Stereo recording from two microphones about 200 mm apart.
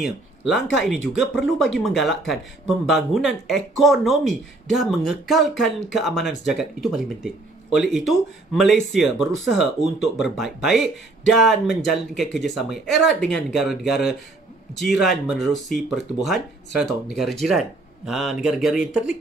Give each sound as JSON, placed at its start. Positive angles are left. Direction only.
{"t": 0.5, "sound": "a man's voice", "side_deg": 0}